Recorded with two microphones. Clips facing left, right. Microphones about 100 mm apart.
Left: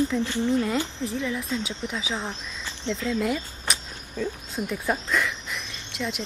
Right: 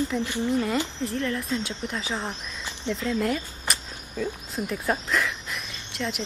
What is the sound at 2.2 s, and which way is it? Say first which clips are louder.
Speech: even; 15° right (ahead or behind).